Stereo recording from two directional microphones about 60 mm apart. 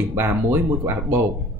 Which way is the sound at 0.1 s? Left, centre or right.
Right.